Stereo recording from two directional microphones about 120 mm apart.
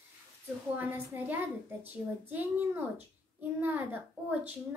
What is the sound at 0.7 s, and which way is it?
A child's voice, 15° right (ahead or behind).